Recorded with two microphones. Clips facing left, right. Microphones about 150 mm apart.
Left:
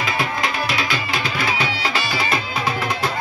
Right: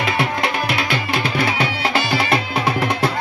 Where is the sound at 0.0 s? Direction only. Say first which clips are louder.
Right 3 dB; 65° right (ahead or behind).